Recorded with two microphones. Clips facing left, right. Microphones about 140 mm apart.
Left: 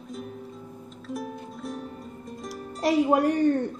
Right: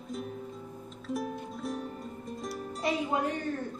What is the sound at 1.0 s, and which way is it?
Music, centre (ahead or behind).